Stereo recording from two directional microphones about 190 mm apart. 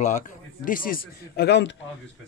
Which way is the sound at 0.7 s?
50° left (ahead or behind).